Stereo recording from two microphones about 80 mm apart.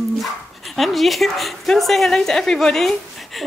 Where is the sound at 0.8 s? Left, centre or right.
Centre.